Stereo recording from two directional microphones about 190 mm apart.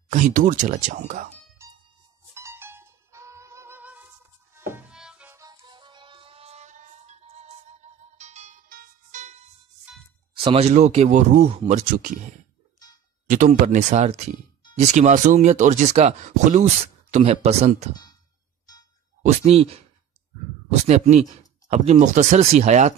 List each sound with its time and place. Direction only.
0.1 s speech: 45° right (ahead or behind)
2.3 s music: 15° right (ahead or behind)
5.4 s music: 20° right (ahead or behind); by 6.9 s 40° right (ahead or behind)
8.2 s music: 35° right (ahead or behind)
10.4 s speech: 30° right (ahead or behind)
11.8 s speech: 45° right (ahead or behind)
13.3 s speech: 40° right (ahead or behind)
19.2 s speech: 30° right (ahead or behind)
20.8 s speech: 35° right (ahead or behind)